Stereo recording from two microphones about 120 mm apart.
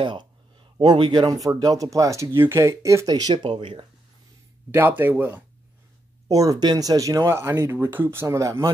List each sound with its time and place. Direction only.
0.0 s speech: 40° right (ahead or behind)
4.6 s speech: 20° right (ahead or behind)
6.2 s speech: 30° right (ahead or behind)